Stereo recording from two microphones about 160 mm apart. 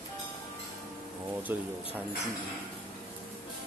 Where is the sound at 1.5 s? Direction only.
15° right (ahead or behind).